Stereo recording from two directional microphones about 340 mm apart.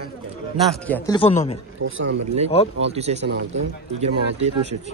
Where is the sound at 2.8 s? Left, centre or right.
Centre.